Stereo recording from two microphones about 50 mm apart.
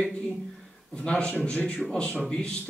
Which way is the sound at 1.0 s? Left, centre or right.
Centre.